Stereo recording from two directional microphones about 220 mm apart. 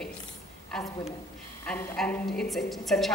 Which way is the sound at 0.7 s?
Centre (ahead or behind).